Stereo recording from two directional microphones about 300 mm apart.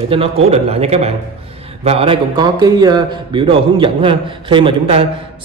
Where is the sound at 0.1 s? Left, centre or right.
Centre.